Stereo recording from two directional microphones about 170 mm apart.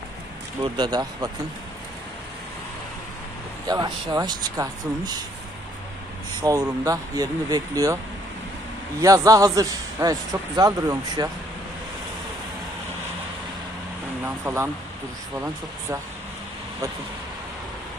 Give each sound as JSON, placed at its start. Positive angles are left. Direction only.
{"t": 0.7, "sound": "a man's voice", "side_deg": -20}
{"t": 3.6, "sound": "a man's voice", "side_deg": -20}
{"t": 6.4, "sound": "a man's voice", "side_deg": -20}
{"t": 9.0, "sound": "a man's voice", "side_deg": -20}
{"t": 14.2, "sound": "speech", "side_deg": -15}